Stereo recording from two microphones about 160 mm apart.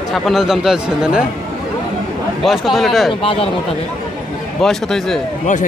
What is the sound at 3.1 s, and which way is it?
Speech, 35° left (ahead or behind).